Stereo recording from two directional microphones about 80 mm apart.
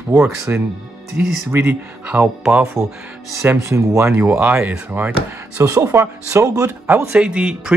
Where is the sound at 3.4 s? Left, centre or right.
Right.